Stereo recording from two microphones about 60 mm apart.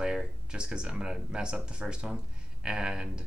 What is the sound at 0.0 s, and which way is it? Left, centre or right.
Speech, centre.